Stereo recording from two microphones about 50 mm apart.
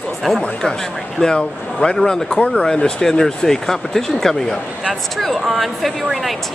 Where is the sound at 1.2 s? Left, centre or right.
Centre.